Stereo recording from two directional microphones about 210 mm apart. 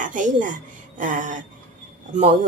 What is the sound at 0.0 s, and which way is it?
A woman's voice, 40° right (ahead or behind).